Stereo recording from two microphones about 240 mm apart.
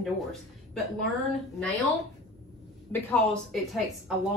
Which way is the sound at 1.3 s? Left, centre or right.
Centre.